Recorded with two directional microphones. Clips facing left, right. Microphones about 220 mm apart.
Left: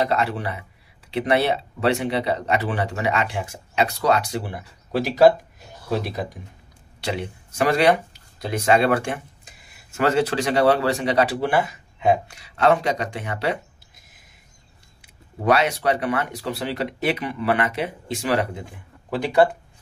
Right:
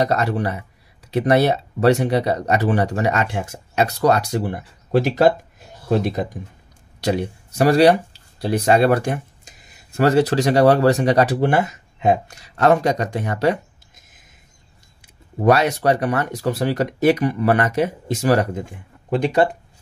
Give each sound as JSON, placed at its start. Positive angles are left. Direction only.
{"t": 0.0, "sound": "speech", "side_deg": -40}
{"t": 15.4, "sound": "speech", "side_deg": -45}